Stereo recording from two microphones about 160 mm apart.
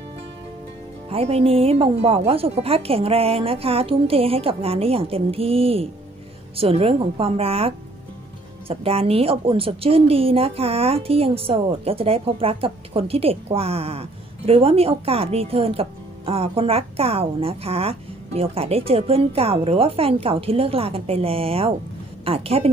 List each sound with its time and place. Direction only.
1.0 s a woman's voice: 40° right (ahead or behind)